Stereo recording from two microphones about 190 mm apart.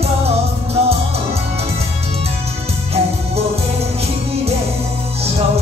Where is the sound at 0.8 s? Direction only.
35° right (ahead or behind).